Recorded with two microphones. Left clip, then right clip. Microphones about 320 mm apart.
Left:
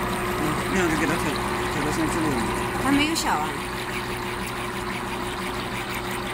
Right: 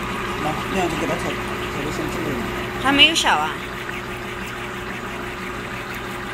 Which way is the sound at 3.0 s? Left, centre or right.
Left.